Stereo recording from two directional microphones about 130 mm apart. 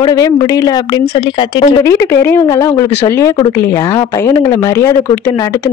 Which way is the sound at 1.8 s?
20° left (ahead or behind).